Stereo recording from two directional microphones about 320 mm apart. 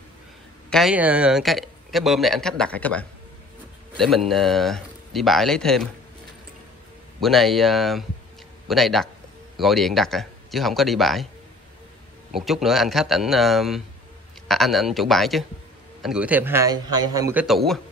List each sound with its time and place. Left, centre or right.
0.7 s speech: centre
7.2 s speech: centre
12.4 s speech: centre